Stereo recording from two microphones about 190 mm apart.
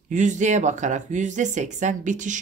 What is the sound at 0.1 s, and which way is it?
Speech, 40° right (ahead or behind).